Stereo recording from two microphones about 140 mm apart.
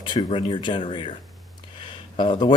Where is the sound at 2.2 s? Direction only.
35° left (ahead or behind).